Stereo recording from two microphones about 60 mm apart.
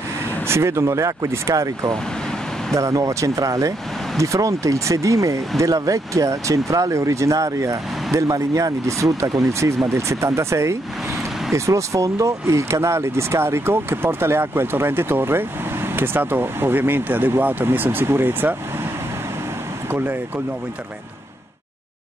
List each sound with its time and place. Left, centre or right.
0.5 s speech: right
19.9 s speech: right